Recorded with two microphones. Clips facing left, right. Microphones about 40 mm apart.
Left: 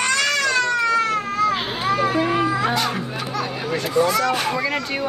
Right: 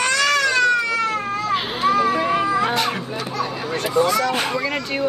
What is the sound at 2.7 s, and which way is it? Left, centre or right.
Music, right.